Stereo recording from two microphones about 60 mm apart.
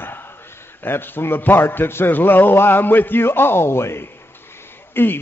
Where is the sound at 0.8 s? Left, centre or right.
Left.